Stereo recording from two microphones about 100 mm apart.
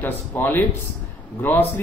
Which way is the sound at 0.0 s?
20° left (ahead or behind).